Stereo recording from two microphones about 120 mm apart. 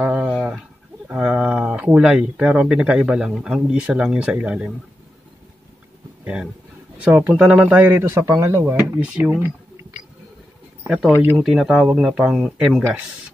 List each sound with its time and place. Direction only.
0.0 s a sound: 10° right (ahead or behind)
1.0 s speech: 10° right (ahead or behind)
6.2 s speech: 10° right (ahead or behind)
10.9 s speech: centre (ahead or behind)
11.1 s speech: 15° right (ahead or behind)
11.4 s speech: 5° right (ahead or behind)